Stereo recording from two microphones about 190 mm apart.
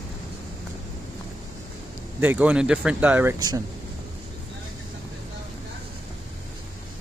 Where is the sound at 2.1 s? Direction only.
10° right (ahead or behind).